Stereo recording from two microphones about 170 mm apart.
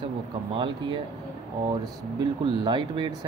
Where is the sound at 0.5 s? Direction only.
30° right (ahead or behind).